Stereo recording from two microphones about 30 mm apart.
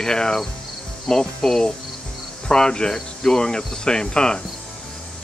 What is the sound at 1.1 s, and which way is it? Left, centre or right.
Speech, centre.